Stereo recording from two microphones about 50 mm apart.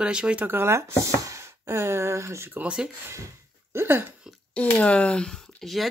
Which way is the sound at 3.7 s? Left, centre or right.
Right.